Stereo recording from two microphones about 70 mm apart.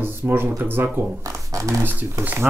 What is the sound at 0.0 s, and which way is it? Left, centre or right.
Speech, right.